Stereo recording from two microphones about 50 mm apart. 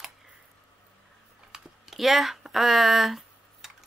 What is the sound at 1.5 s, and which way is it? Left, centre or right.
Typing, centre.